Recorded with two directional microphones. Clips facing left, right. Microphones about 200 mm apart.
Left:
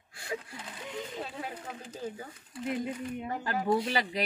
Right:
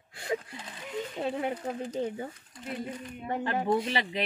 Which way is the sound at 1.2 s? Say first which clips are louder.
Right 9 dB; 25° right (ahead or behind).